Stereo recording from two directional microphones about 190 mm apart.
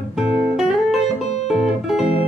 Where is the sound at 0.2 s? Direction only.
5° right (ahead or behind).